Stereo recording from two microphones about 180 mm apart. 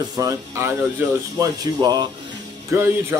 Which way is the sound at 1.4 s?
20° right (ahead or behind).